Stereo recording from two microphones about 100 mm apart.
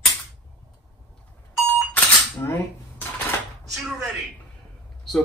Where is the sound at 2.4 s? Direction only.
20° left (ahead or behind).